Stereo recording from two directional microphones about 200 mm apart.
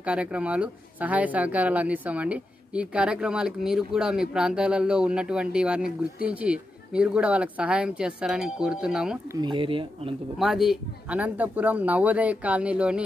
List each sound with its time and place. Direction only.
0.0 s speech: 5° right (ahead or behind)
9.3 s speech: 20° right (ahead or behind)
10.4 s speech: centre (ahead or behind)